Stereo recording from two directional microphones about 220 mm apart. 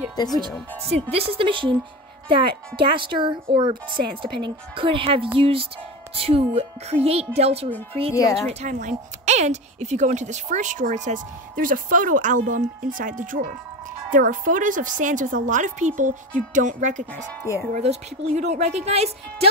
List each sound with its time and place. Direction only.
0.1 s speech: 20° left (ahead or behind)
1.1 s speech: 25° right (ahead or behind)
8.1 s speech: 15° left (ahead or behind)
8.5 s speech: 30° right (ahead or behind)